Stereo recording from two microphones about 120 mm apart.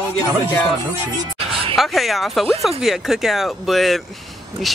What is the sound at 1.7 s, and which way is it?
Speech, centre (ahead or behind).